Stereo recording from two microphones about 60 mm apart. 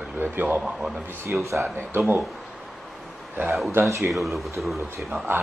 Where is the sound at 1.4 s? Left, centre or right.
Right.